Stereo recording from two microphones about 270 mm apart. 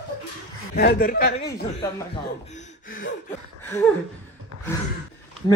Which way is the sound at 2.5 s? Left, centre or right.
Left.